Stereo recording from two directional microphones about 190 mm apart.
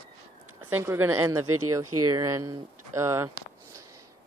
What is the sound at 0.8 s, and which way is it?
Speech, 15° right (ahead or behind).